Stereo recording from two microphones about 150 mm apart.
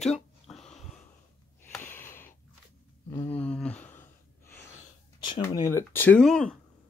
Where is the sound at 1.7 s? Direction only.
15° left (ahead or behind).